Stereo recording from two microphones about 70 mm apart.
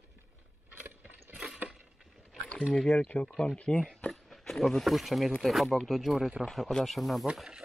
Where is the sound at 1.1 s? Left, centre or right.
Right.